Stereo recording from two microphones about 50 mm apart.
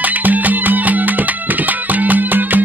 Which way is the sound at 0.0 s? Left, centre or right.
Right.